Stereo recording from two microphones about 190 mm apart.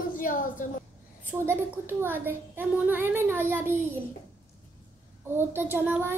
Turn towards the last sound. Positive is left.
turn(degrees=-10)  # may be behind; listen again after turning